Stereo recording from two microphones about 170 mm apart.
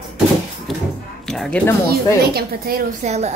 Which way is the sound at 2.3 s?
65° right (ahead or behind).